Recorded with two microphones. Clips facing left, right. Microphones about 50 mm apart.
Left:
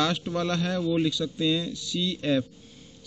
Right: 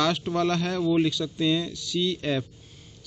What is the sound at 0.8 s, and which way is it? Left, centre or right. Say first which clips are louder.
Mantra: right 4 dB; centre.